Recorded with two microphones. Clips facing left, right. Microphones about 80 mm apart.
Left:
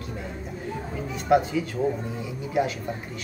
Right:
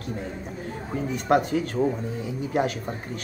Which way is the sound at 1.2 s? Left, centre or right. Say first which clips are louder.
Left 1 dB; right.